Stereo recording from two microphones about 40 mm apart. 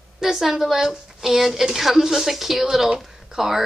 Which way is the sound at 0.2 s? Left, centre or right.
Centre.